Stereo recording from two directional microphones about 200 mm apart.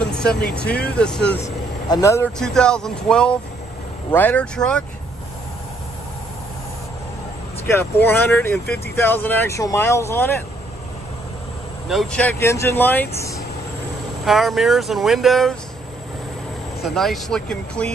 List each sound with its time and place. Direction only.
0.0 s vehicle: 5° left (ahead or behind)
0.8 s speech: 5° left (ahead or behind)
1.9 s speech: 15° left (ahead or behind)
2.3 s speech: 5° left (ahead or behind)
7.7 s speech: 10° left (ahead or behind)
8.6 s speech: 50° left (ahead or behind)
9.0 s speech: 10° left (ahead or behind)
11.9 s speech: centre (ahead or behind)
14.2 s speech: centre (ahead or behind)
16.8 s speech: centre (ahead or behind)